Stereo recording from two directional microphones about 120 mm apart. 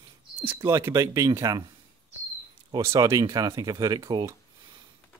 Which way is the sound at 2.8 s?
25° right (ahead or behind).